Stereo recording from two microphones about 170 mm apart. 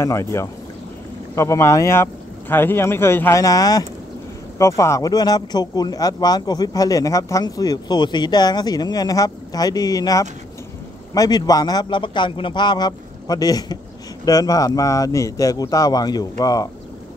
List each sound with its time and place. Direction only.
0.0 s speech: 15° left (ahead or behind)